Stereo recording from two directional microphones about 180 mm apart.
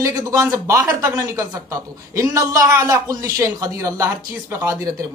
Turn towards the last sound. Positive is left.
turn(degrees=-20)  # may be behind; listen again after turning